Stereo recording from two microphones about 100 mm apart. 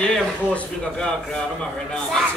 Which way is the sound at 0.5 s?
10° left (ahead or behind).